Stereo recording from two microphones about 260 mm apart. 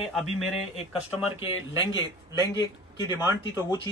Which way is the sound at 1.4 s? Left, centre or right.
Centre.